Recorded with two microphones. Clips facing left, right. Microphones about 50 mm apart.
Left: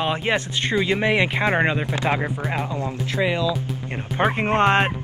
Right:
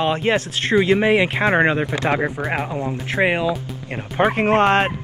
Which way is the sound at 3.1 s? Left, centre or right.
Right.